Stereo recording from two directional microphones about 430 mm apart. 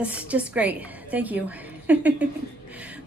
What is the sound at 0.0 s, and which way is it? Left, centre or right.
A woman's voice, centre.